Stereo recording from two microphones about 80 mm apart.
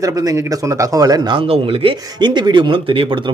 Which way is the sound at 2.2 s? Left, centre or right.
Right.